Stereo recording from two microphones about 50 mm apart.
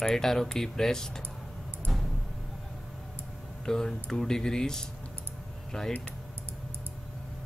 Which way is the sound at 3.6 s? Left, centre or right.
Centre.